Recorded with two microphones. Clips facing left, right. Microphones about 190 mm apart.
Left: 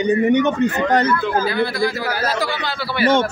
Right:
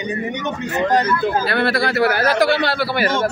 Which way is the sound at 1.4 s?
70° right (ahead or behind).